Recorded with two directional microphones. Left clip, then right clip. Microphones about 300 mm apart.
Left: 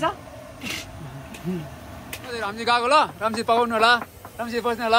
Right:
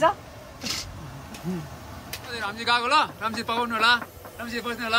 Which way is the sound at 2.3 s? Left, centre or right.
Centre.